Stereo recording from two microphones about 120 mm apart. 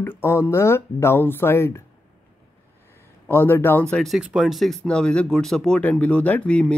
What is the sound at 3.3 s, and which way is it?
Speech, 15° left (ahead or behind).